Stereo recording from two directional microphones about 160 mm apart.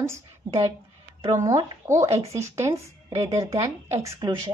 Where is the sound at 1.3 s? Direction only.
20° right (ahead or behind).